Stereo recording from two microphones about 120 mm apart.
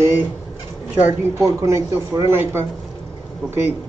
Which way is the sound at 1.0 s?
25° right (ahead or behind).